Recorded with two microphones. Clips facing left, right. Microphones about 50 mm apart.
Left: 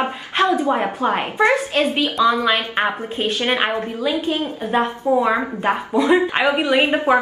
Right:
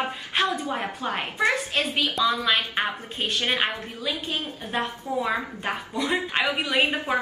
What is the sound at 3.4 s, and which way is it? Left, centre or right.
Speech, left.